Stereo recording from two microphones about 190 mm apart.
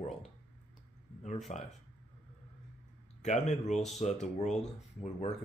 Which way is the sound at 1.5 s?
35° left (ahead or behind).